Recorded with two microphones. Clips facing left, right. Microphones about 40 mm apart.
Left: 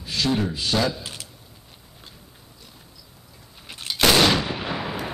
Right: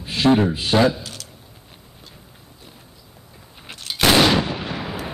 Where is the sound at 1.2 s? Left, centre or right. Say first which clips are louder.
Right 1 dB; left.